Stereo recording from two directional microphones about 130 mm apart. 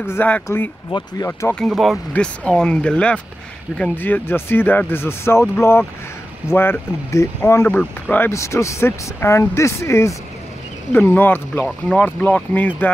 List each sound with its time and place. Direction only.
0.0 s speech: 15° left (ahead or behind)
1.5 s speech: centre (ahead or behind)